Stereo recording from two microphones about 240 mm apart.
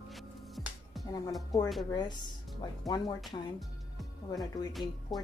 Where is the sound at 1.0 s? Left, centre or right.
Centre.